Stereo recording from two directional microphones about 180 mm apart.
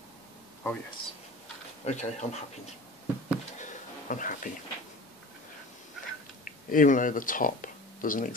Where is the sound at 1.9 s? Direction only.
40° left (ahead or behind).